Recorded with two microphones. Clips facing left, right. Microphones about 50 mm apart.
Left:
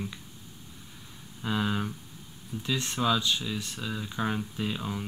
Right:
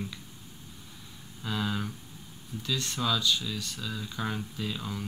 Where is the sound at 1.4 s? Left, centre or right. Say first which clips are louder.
Left 3 dB; centre.